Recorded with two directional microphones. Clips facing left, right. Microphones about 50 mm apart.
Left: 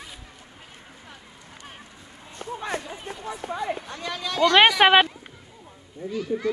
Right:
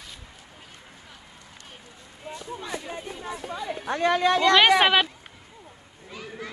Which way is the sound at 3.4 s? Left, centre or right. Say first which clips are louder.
Left 5 dB; left.